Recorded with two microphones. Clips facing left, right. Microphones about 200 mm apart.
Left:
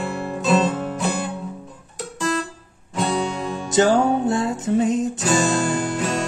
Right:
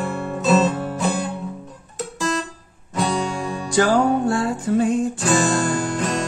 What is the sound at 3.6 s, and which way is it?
Music, 20° left (ahead or behind).